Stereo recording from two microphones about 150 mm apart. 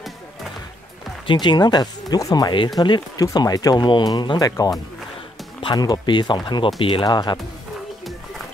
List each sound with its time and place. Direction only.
1.2 s speech: 30° left (ahead or behind)